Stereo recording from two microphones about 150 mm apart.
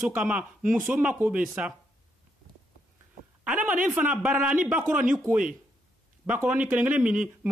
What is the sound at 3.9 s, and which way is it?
A man's voice, 10° right (ahead or behind).